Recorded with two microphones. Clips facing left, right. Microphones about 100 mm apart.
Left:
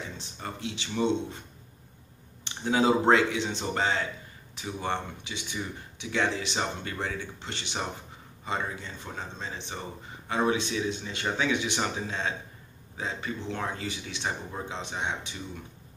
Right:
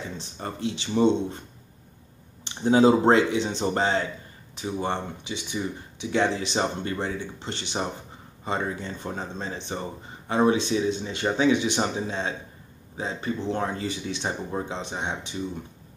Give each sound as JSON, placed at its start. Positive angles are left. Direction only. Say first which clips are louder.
{"t": 0.4, "sound": "speech", "louder": "right 6 dB", "side_deg": -35}
{"t": 2.4, "sound": "speech", "louder": "right 6 dB", "side_deg": -30}